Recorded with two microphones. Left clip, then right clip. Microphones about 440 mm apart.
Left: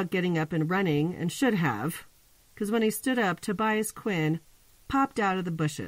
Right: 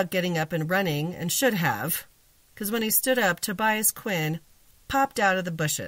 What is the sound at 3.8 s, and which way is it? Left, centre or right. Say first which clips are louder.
Speech: right 1 dB; centre.